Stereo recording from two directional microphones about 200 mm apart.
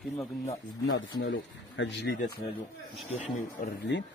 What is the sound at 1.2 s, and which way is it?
Speech, 65° left (ahead or behind).